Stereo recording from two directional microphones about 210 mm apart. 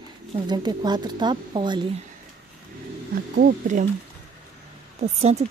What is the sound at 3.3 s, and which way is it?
Speech, 35° right (ahead or behind).